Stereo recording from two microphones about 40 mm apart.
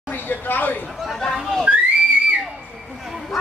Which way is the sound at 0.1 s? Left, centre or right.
Left.